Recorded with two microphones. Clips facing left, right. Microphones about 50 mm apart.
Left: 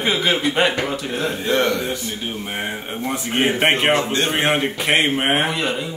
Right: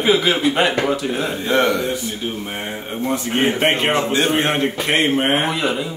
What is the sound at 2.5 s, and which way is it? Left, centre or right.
A man's voice, centre.